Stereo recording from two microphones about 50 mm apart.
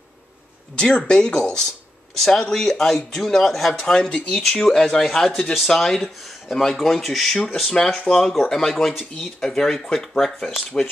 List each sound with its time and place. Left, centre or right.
0.7 s speech: centre
4.0 s speech: left
4.4 s speech: centre